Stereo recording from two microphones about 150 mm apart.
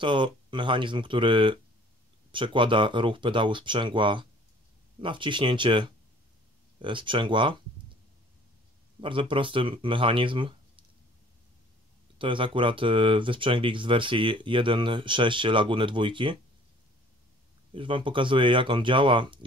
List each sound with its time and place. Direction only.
0.0 s speech: 30° right (ahead or behind)
9.0 s speech: 35° right (ahead or behind)
12.2 s speech: 35° right (ahead or behind)
17.7 s speech: 35° right (ahead or behind)